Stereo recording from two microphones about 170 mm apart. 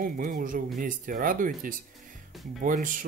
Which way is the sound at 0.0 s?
55° right (ahead or behind).